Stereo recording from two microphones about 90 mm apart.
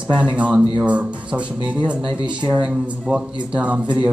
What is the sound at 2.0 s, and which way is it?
Speech, 65° right (ahead or behind).